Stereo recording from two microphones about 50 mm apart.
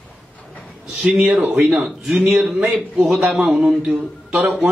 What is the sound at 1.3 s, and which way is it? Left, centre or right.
Speech, right.